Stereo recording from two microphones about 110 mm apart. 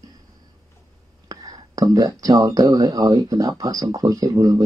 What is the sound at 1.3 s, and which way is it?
Whispering, 35° right (ahead or behind).